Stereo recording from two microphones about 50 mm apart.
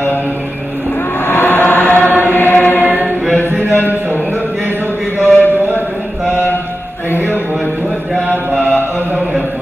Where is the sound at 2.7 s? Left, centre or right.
Left.